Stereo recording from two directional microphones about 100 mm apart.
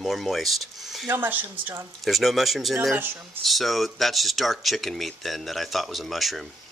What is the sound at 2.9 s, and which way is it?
Speech, 20° right (ahead or behind).